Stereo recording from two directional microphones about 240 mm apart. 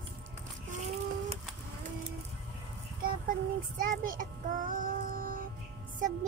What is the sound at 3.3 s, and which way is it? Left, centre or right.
Speech, right.